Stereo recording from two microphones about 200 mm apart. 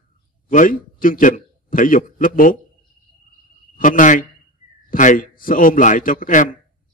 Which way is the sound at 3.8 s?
40° left (ahead or behind).